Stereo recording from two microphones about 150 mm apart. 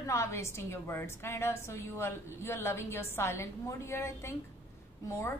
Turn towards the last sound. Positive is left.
turn(degrees=15)  # may be behind; listen again after turning